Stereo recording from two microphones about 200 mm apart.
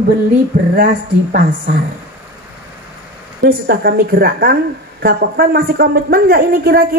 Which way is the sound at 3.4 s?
50° right (ahead or behind).